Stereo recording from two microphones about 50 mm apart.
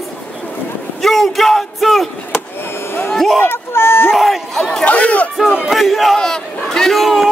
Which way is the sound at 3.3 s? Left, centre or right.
Left.